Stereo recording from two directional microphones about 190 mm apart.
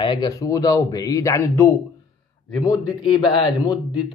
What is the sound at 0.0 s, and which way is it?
Speech, 20° left (ahead or behind).